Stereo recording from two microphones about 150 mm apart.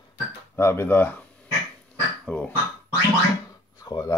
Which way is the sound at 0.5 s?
15° left (ahead or behind).